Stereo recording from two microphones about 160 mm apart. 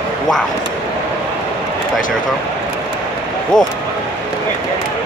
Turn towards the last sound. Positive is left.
turn(degrees=25)  # may be behind; listen again after turning